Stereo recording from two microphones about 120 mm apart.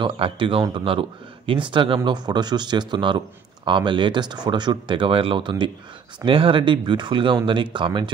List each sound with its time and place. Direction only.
0.0 s speech: 45° right (ahead or behind)